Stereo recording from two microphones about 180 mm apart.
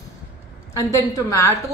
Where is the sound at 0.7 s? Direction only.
20° left (ahead or behind).